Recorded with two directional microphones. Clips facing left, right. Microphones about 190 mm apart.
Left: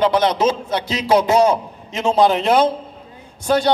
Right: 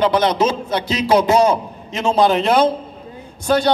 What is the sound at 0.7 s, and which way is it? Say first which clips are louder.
Speech: right 1 dB; 10° left (ahead or behind).